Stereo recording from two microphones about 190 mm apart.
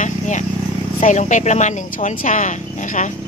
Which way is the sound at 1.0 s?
40° left (ahead or behind).